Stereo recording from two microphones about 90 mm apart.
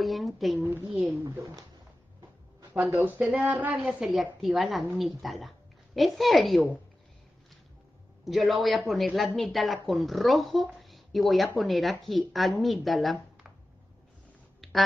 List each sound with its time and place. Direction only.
0.0 s speech: centre (ahead or behind)
0.9 s speech: 15° right (ahead or behind)
1.2 s speech: 40° right (ahead or behind)
3.0 s a woman's voice: 15° right (ahead or behind)
3.8 s speech: 5° right (ahead or behind)
8.3 s a woman's voice: centre (ahead or behind)
14.6 s a sound: centre (ahead or behind)